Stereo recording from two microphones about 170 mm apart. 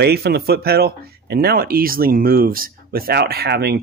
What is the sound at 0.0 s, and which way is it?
Speech, 70° right (ahead or behind).